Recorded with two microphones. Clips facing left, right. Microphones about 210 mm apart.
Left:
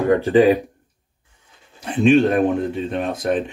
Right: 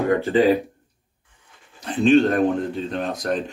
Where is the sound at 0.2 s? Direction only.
15° left (ahead or behind).